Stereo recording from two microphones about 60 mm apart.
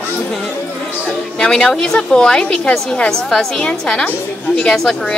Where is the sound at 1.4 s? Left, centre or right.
Centre.